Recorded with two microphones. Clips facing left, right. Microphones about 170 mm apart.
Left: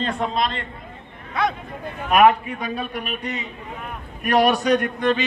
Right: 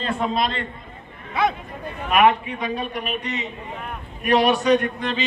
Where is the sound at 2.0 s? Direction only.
45° left (ahead or behind).